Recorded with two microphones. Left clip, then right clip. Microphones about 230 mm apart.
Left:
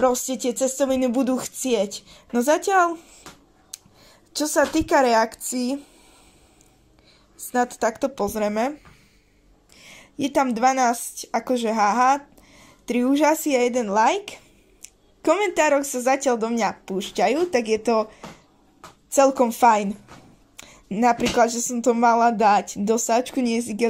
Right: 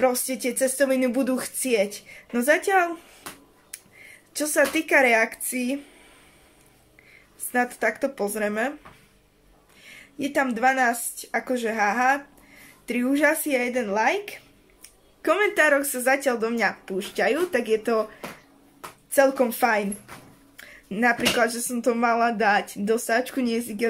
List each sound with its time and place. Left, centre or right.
0.0 s speech: centre
4.3 s speech: centre
7.6 s speech: centre
9.8 s speech: left
19.2 s speech: centre
20.9 s speech: centre